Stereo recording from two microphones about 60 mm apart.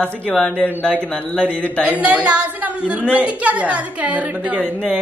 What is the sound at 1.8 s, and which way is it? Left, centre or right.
A woman's voice, right.